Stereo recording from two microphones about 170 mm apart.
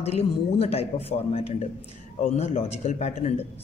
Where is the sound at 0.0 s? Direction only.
35° left (ahead or behind).